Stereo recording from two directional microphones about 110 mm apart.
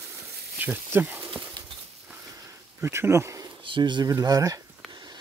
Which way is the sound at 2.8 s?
25° right (ahead or behind).